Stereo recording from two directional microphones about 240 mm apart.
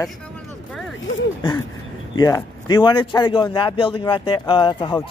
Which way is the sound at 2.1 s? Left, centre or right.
Centre.